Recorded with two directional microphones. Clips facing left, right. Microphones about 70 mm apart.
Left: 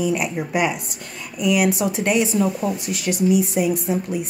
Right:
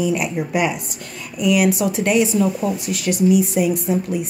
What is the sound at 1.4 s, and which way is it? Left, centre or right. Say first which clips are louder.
Speech: right 2 dB; left.